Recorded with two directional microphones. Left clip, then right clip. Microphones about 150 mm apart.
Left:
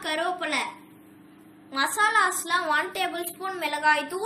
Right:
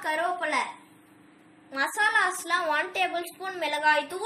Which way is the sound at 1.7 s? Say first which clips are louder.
Left 2 dB; 45° right (ahead or behind).